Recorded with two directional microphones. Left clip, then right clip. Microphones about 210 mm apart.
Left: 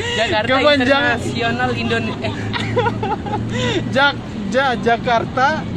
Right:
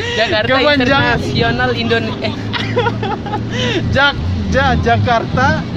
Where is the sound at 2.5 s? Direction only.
10° left (ahead or behind).